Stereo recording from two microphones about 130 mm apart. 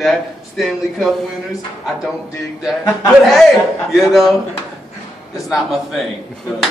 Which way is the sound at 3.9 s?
Centre (ahead or behind).